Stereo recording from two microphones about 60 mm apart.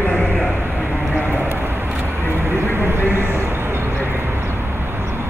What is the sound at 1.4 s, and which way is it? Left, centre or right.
Vehicle, right.